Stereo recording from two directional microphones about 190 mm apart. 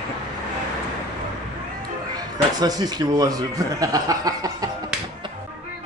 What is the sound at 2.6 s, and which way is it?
A man's voice, 20° right (ahead or behind).